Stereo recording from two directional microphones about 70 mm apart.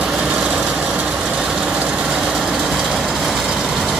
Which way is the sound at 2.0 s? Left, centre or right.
Centre.